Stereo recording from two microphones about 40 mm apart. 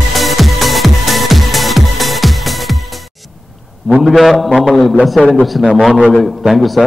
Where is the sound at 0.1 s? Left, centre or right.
Centre.